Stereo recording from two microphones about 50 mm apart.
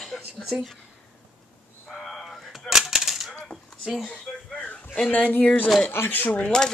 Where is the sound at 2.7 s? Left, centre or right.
Centre.